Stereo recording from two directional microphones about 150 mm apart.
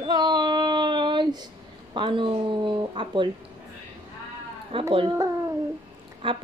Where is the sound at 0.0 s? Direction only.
30° right (ahead or behind).